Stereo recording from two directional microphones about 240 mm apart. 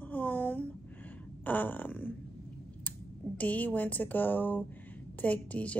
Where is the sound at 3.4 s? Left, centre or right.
Centre.